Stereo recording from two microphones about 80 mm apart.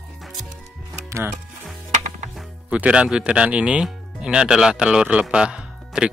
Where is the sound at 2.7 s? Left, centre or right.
Centre.